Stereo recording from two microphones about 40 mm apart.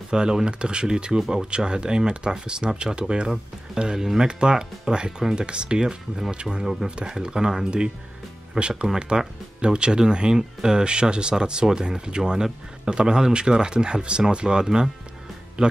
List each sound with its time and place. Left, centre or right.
0.1 s speech: centre
8.8 s speech: centre
9.6 s speech: right